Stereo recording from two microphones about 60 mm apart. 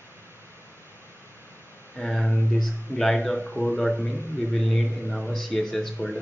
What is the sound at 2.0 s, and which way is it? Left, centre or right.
Speech, centre.